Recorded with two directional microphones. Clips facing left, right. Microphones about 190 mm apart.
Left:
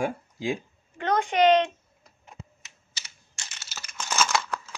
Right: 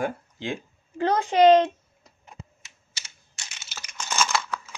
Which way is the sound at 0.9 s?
30° right (ahead or behind).